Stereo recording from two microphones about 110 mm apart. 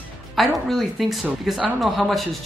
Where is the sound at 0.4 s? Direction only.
Centre (ahead or behind).